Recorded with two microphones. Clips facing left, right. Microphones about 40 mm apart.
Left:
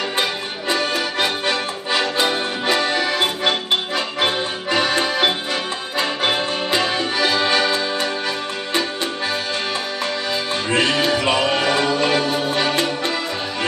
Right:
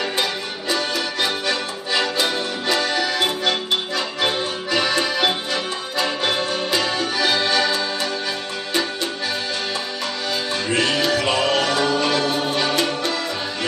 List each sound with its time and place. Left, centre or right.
0.7 s accordion: left
1.5 s music: left
7.2 s accordion: left
10.7 s music: left